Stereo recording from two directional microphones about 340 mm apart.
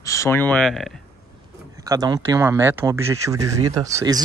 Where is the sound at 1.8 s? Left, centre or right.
Centre.